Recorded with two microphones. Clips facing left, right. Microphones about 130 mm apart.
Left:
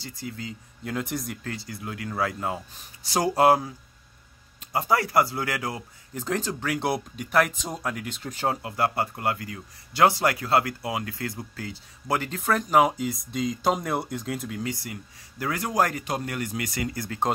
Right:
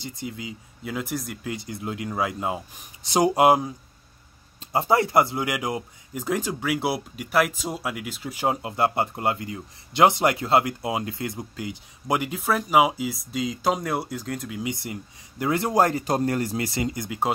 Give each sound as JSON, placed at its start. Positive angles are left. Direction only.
{"t": 0.0, "sound": "speech", "side_deg": -20}
{"t": 1.4, "sound": "speech", "side_deg": -20}
{"t": 4.7, "sound": "speech", "side_deg": -25}
{"t": 14.6, "sound": "a man's voice", "side_deg": -20}